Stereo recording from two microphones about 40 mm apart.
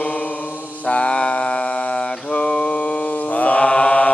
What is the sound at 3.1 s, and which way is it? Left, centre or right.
Mantra, left.